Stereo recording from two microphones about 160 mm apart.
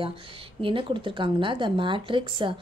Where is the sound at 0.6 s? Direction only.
30° right (ahead or behind).